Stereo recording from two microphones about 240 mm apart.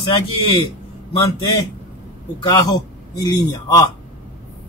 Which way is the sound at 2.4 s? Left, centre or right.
Centre.